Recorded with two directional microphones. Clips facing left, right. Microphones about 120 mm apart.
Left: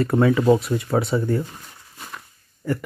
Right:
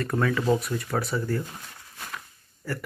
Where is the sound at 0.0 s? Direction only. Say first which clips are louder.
Left 8 dB; 25° left (ahead or behind).